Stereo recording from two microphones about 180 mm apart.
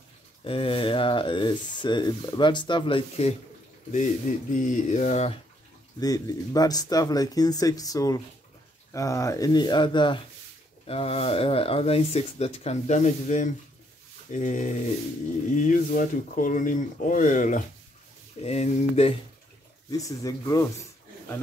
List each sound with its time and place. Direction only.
0.4 s speech: 30° left (ahead or behind)
3.9 s speech: 45° left (ahead or behind)
5.9 s speech: 20° left (ahead or behind); by 17.6 s 45° left (ahead or behind)
18.4 s speech: 35° left (ahead or behind)
19.9 s speech: 20° left (ahead or behind)